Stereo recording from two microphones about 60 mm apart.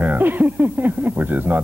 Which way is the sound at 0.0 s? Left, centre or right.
Right.